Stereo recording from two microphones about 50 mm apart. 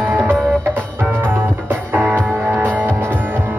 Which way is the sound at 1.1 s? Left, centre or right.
Right.